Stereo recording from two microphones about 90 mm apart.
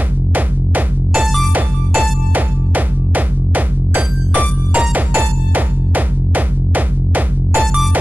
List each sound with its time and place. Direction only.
0.3 s music: 15° right (ahead or behind)